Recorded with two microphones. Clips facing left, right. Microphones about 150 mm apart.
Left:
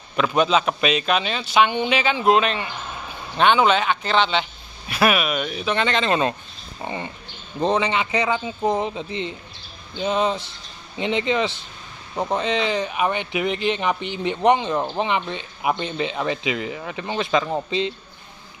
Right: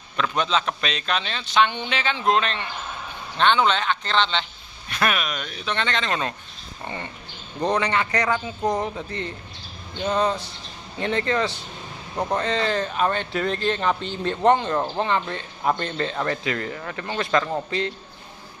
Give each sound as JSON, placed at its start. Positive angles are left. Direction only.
{"t": 0.1, "sound": "speech", "side_deg": 10}
{"t": 6.0, "sound": "a man's voice", "side_deg": 25}